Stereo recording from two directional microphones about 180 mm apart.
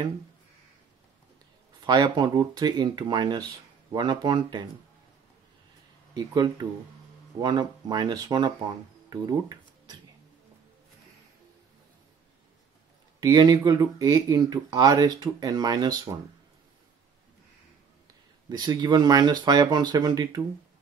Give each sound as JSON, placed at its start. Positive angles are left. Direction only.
{"t": 1.9, "sound": "speech", "side_deg": -25}
{"t": 6.1, "sound": "speech", "side_deg": -20}
{"t": 13.2, "sound": "speech", "side_deg": -20}
{"t": 18.5, "sound": "speech", "side_deg": -25}